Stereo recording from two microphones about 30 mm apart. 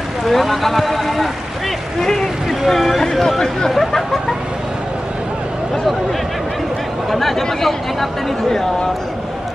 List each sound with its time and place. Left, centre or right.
0.2 s speech: centre
2.0 s speech: centre
7.1 s speech: centre